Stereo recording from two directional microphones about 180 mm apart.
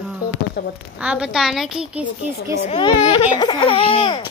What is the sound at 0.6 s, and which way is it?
Speech, 65° left (ahead or behind).